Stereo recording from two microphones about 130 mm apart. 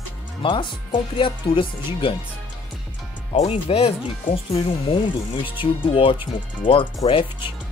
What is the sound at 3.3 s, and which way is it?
Speech, 55° left (ahead or behind).